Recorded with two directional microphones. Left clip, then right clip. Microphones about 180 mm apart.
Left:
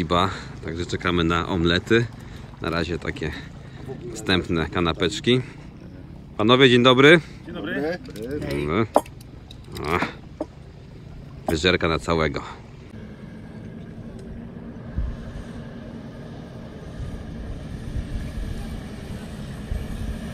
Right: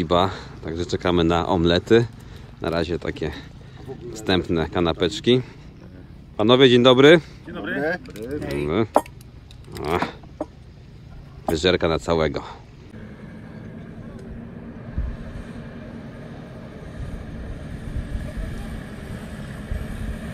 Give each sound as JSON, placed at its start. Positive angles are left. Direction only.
{"t": 0.0, "sound": "a man's voice", "side_deg": -10}
{"t": 8.2, "sound": "speech", "side_deg": 5}
{"t": 8.5, "sound": "speech", "side_deg": -10}
{"t": 9.8, "sound": "a sound", "side_deg": -15}
{"t": 11.4, "sound": "speech", "side_deg": -10}
{"t": 15.0, "sound": "vehicle", "side_deg": 5}